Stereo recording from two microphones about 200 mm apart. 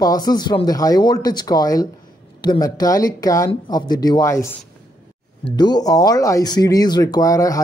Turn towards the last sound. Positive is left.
turn(degrees=15)  # may be behind; listen again after turning